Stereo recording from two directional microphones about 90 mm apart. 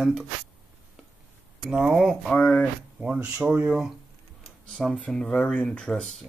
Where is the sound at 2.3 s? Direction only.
15° left (ahead or behind).